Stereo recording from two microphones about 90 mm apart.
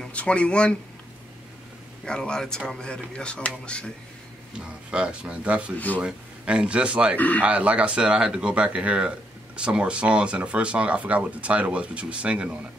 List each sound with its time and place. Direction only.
0.0 s speech: 15° left (ahead or behind)
2.0 s speech: 10° left (ahead or behind)
4.6 s speech: 10° right (ahead or behind)
7.2 s speech: 20° left (ahead or behind)
7.4 s speech: 15° right (ahead or behind)